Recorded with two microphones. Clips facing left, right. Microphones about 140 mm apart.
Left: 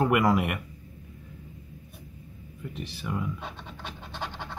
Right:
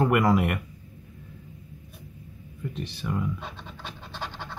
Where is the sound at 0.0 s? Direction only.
5° left (ahead or behind).